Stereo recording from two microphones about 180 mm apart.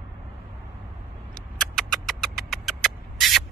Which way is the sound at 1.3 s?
5° left (ahead or behind).